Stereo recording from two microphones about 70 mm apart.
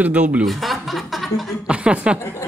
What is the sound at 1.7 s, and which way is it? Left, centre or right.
Speech, centre.